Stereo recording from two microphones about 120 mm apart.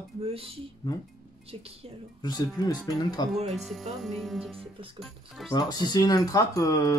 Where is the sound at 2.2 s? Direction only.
35° left (ahead or behind).